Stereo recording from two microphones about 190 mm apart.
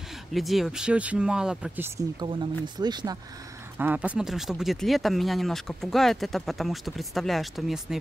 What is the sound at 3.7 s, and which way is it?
Speech, 10° right (ahead or behind).